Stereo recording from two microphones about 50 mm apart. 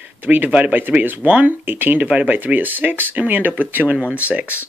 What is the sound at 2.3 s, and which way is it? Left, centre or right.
Speech, right.